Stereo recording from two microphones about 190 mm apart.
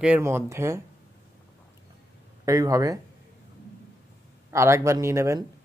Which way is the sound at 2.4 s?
15° right (ahead or behind).